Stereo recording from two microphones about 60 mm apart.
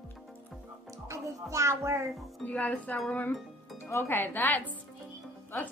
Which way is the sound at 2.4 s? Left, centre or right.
Left.